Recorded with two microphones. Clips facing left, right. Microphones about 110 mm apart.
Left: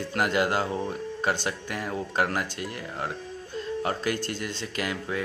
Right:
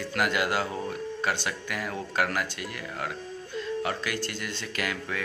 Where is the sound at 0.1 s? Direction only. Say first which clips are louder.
Left 2 dB; 35° left (ahead or behind).